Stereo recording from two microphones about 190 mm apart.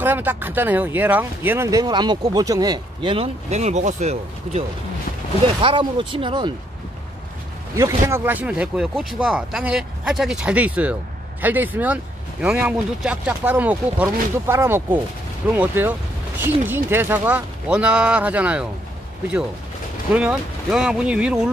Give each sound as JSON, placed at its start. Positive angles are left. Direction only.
{"t": 0.0, "sound": "speech", "side_deg": -10}
{"t": 7.7, "sound": "speech", "side_deg": -15}
{"t": 20.1, "sound": "speech", "side_deg": -5}